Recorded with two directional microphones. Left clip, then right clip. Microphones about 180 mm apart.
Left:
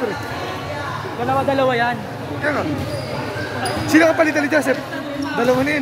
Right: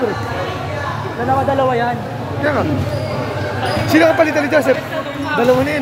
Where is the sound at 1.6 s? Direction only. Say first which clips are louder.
Right 1 dB; 50° left (ahead or behind).